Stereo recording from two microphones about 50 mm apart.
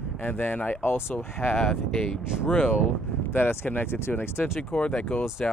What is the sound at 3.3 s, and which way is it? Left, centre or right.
Speech, left.